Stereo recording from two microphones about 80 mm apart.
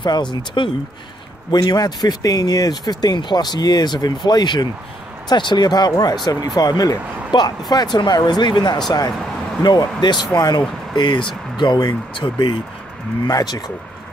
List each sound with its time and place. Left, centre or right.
0.0 s speech: left
1.5 s speech: left
7.3 s speech: left
8.8 s speech: left
11.0 s speech: left
13.3 s speech: left